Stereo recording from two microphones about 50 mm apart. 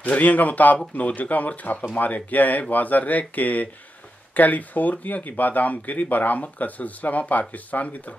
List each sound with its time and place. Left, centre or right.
0.0 s speech: left